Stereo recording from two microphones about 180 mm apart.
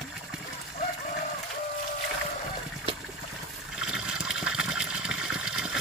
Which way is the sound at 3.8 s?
5° right (ahead or behind).